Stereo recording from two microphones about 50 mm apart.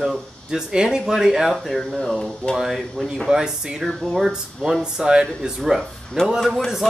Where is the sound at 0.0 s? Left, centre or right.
Centre.